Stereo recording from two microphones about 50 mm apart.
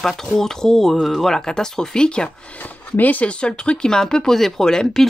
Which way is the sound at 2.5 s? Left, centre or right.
Left.